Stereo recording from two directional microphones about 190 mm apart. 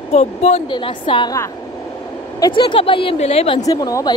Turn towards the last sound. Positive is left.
turn(degrees=20)  # may be behind; listen again after turning